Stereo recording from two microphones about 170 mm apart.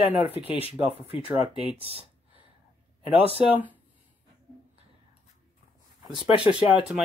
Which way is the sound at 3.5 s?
10° right (ahead or behind).